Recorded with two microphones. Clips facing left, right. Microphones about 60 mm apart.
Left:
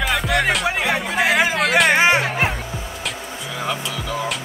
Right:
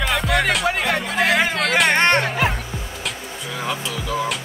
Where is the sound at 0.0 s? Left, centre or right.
Centre.